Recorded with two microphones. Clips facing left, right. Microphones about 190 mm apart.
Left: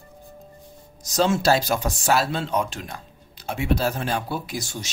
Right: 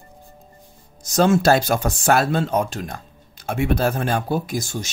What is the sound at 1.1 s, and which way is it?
Speech, 50° right (ahead or behind).